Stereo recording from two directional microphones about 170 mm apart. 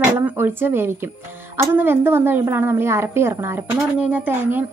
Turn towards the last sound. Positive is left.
turn(degrees=-10)  # may be behind; listen again after turning